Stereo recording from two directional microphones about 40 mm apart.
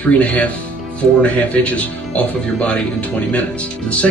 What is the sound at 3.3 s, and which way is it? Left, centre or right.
Speech, left.